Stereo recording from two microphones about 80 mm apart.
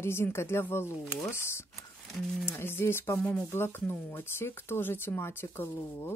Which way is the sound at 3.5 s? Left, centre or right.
Left.